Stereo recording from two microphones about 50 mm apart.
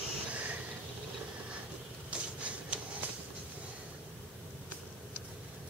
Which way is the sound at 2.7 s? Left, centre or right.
Right.